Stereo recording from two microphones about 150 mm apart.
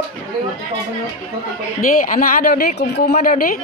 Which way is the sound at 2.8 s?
90° left.